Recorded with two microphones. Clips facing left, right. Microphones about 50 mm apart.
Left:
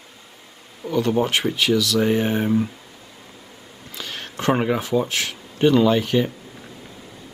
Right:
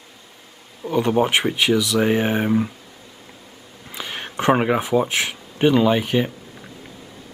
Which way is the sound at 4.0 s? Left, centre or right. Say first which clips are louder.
Right 4 dB; right.